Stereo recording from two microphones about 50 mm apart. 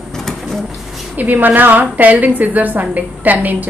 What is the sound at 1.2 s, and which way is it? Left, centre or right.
A woman's voice, right.